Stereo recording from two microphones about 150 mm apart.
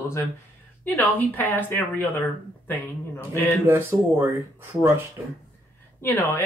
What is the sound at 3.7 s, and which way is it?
Speech, 15° right (ahead or behind).